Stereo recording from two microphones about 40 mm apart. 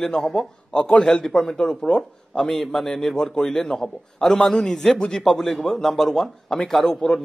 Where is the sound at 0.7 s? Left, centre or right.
Left.